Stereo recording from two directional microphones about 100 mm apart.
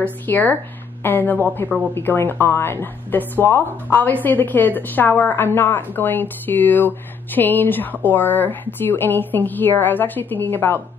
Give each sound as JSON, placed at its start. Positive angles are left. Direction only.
{"t": 0.0, "sound": "speech", "side_deg": 15}